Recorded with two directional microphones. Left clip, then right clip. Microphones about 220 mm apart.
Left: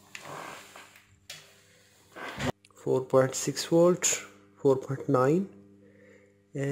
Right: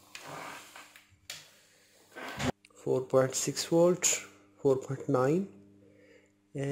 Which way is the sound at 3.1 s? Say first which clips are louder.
Left 3 dB; 5° left (ahead or behind).